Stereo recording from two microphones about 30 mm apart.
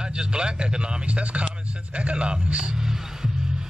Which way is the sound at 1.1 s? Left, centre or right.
Right.